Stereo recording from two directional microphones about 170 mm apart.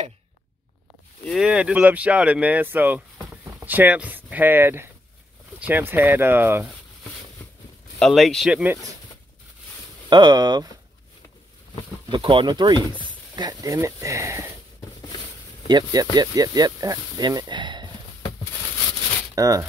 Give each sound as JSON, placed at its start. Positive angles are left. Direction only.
{"t": 1.2, "sound": "speech", "side_deg": 0}
{"t": 8.0, "sound": "speech", "side_deg": 0}
{"t": 10.0, "sound": "speech", "side_deg": -25}
{"t": 12.1, "sound": "speech", "side_deg": -30}
{"t": 15.6, "sound": "speech", "side_deg": -20}
{"t": 19.3, "sound": "speech", "side_deg": -20}